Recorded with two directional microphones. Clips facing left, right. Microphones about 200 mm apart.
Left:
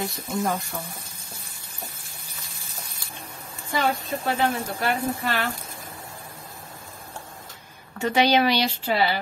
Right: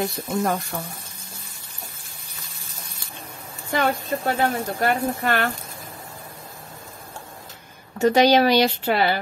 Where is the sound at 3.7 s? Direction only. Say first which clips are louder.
Right 3 dB; 50° right (ahead or behind).